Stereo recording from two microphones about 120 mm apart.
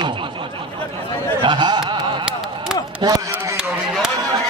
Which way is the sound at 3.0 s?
30° right (ahead or behind).